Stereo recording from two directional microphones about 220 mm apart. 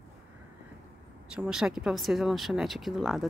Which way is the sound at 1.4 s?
5° right (ahead or behind).